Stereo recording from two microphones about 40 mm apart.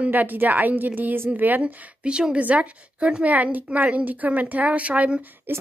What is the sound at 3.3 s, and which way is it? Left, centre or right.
A woman's voice, right.